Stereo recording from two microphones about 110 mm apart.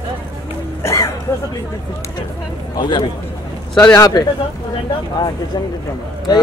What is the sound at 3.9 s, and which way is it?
Speech, 35° left (ahead or behind).